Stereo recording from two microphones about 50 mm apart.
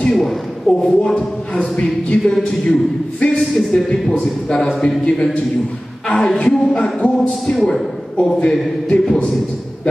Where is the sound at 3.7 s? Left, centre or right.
Centre.